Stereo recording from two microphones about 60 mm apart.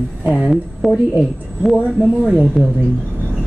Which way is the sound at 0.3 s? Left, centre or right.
Centre.